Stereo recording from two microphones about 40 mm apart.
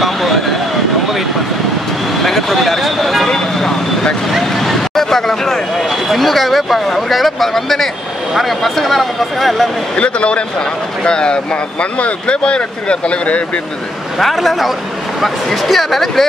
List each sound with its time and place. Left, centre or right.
2.2 s vehicle: centre
3.3 s vehicle: centre
4.3 s vehicle: centre
6.0 s speech: centre
9.9 s speech: left
14.2 s speech: centre